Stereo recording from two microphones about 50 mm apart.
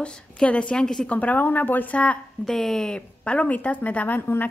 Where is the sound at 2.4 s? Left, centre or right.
Centre.